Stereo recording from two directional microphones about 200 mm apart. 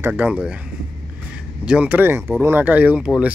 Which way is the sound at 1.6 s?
5° right (ahead or behind).